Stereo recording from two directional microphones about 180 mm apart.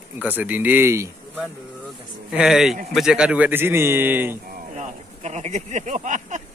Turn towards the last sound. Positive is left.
turn(degrees=-45)  # may be behind; listen again after turning